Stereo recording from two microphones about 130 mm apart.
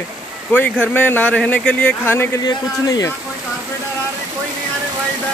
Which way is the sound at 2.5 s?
25° left (ahead or behind).